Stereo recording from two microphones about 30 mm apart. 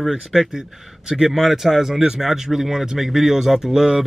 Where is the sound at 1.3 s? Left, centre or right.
Centre.